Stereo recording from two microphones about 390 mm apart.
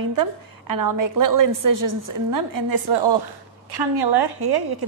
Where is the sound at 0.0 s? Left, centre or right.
Right.